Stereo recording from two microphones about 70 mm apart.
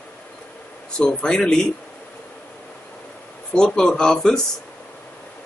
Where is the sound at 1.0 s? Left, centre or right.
Centre.